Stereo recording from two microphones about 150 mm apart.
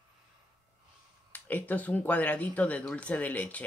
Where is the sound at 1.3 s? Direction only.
10° left (ahead or behind).